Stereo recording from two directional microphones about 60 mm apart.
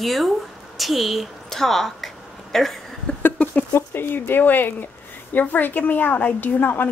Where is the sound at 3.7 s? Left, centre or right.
Left.